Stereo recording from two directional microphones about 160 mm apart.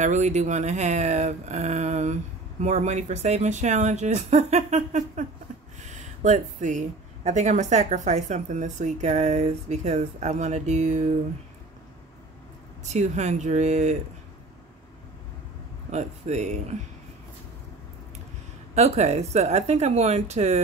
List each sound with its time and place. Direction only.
0.0 s speech: 45° right (ahead or behind)
12.8 s speech: 45° right (ahead or behind)
15.9 s speech: 45° right (ahead or behind)
18.8 s speech: 40° right (ahead or behind)